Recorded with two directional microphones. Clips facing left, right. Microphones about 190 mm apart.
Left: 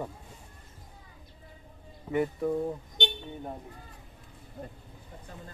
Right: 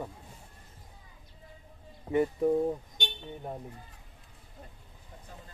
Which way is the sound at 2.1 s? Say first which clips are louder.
Right 2 dB; 25° right (ahead or behind).